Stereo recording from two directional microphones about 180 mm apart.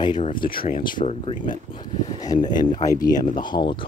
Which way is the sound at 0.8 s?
25° left (ahead or behind).